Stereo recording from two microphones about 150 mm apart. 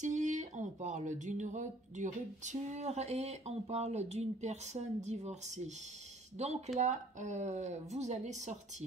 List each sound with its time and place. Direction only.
0.0 s speech: 55° right (ahead or behind)